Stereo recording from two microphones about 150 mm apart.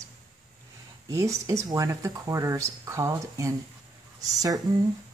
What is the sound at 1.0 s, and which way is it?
Speech, 20° right (ahead or behind).